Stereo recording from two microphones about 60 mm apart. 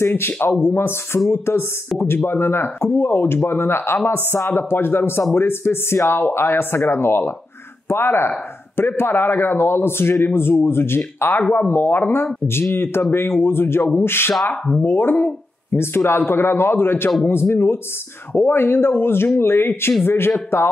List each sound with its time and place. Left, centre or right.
0.0 s speech: left